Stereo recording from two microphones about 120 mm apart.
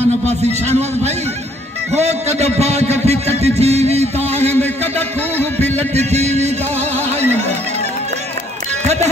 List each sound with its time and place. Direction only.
0.3 s a man's voice: 65° right (ahead or behind)
4.4 s a man's voice: 15° left (ahead or behind)
5.9 s a man's voice: 65° right (ahead or behind)